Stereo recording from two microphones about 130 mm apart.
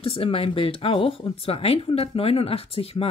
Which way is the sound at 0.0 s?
45° left (ahead or behind).